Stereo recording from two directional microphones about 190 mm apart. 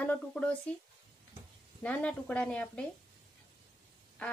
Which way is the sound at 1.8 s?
5° left (ahead or behind).